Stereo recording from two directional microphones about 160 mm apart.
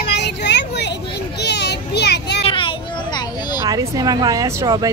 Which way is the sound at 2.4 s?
35° left (ahead or behind).